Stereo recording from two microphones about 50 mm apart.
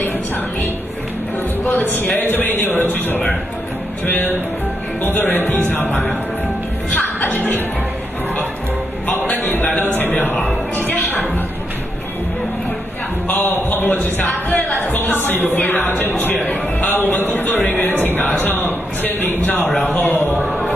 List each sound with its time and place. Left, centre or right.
1.6 s a man's voice: left
5.3 s a man's voice: left
6.9 s music: left
9.3 s music: left
13.3 s a man's voice: left